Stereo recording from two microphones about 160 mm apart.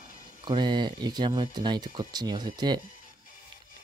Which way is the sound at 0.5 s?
30° right (ahead or behind).